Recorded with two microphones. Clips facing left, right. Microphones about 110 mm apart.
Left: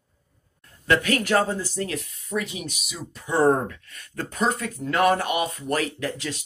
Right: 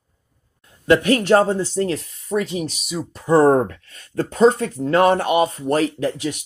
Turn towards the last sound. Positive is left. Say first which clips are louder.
# right 7 dB
turn(degrees=-20)  # may be behind; listen again after turning